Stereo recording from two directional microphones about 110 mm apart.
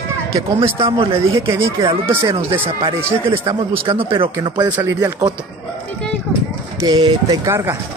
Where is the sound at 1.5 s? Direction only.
25° right (ahead or behind).